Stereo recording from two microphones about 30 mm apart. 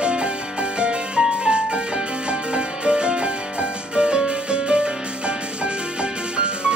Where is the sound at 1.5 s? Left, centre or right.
Right.